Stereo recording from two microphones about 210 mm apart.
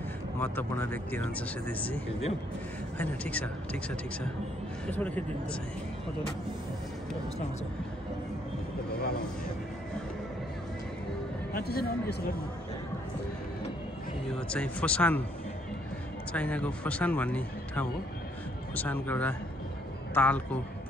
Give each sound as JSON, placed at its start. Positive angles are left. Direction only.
{"t": 0.4, "sound": "speech", "side_deg": 10}
{"t": 3.0, "sound": "speech", "side_deg": 5}
{"t": 11.5, "sound": "a man's voice", "side_deg": 45}
{"t": 14.5, "sound": "speech", "side_deg": 5}
{"t": 16.3, "sound": "speech", "side_deg": 5}